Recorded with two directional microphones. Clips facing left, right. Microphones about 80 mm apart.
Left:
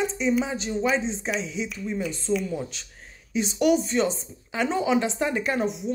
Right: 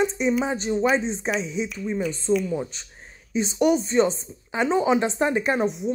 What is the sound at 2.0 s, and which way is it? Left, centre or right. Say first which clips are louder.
Speech: right 4 dB; centre.